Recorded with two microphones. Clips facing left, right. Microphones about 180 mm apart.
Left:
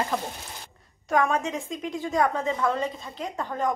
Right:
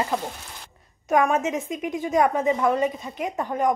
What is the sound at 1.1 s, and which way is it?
A woman's voice, 20° right (ahead or behind).